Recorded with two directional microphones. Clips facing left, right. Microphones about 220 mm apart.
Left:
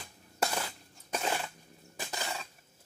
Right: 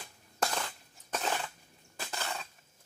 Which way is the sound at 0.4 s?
10° left (ahead or behind).